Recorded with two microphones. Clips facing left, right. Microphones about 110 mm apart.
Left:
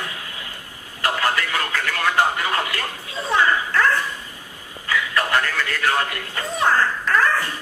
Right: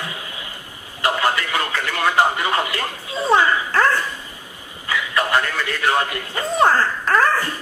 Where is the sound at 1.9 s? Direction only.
15° right (ahead or behind).